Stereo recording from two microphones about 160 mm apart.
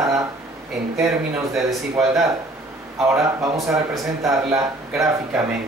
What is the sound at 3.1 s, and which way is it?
Speech, 20° right (ahead or behind).